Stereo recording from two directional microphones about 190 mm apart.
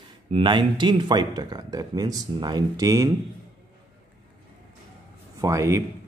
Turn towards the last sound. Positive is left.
turn(degrees=-15)  # may be behind; listen again after turning